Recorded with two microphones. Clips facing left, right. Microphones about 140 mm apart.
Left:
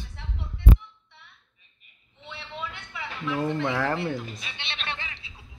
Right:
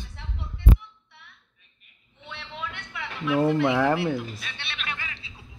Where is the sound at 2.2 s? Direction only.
Centre (ahead or behind).